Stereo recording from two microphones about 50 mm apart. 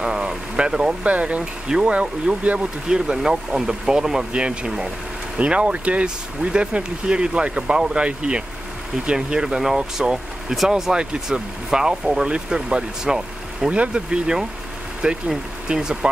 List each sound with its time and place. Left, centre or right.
0.0 s vehicle: centre
1.0 s speech: right
2.9 s speech: centre
13.7 s speech: right